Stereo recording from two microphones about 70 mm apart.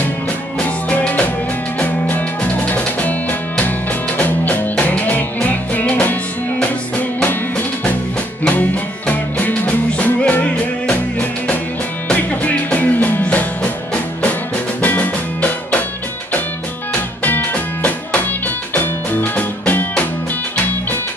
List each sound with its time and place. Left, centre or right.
0.6 s music: centre
14.8 s music: left
16.9 s music: left